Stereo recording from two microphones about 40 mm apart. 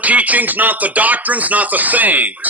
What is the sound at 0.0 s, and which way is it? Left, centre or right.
Speech, right.